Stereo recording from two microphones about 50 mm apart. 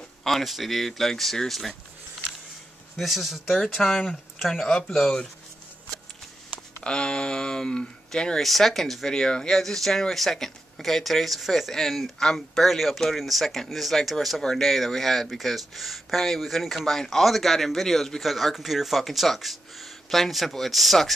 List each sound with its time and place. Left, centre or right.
0.2 s speech: centre
3.0 s speech: centre
6.8 s speech: centre
8.4 s speech: centre